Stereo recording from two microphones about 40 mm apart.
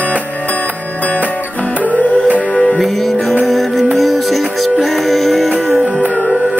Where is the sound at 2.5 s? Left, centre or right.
Left.